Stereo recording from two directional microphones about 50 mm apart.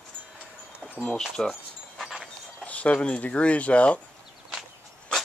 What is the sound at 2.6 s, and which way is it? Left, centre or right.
Speech, left.